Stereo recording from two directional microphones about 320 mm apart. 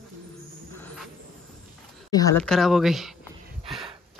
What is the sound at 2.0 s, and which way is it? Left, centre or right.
Speech, centre.